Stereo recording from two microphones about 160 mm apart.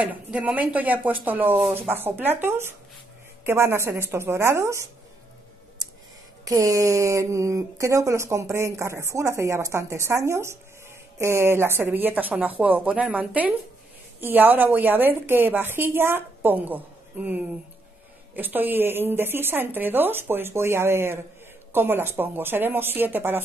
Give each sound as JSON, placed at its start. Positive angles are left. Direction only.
{"t": 0.0, "sound": "speech", "side_deg": -10}
{"t": 6.4, "sound": "speech", "side_deg": -20}